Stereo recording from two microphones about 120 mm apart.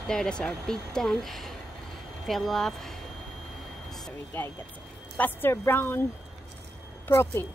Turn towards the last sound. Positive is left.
turn(degrees=20)  # may be behind; listen again after turning